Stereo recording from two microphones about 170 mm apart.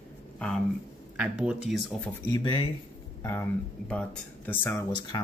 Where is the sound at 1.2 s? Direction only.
5° right (ahead or behind).